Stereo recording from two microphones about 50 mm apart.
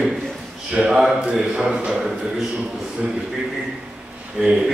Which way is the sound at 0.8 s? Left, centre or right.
Centre.